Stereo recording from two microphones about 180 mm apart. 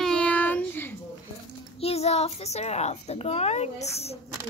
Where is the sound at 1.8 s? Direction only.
35° left (ahead or behind).